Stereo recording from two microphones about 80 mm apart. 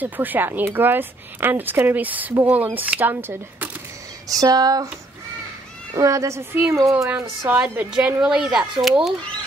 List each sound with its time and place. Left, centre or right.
0.0 s speech: right
4.3 s a sound: right
5.9 s a woman's voice: right
7.2 s speech: right
8.2 s a child's voice: centre